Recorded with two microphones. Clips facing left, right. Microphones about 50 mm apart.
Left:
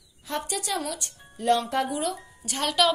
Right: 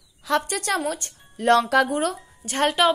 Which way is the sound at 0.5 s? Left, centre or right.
Right.